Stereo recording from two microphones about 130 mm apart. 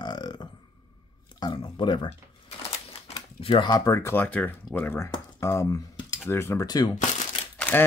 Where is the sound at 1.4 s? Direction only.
35° left (ahead or behind).